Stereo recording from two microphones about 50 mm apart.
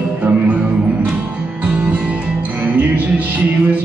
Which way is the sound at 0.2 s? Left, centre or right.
Right.